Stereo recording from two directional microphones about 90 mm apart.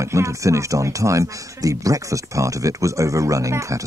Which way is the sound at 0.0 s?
35° right (ahead or behind).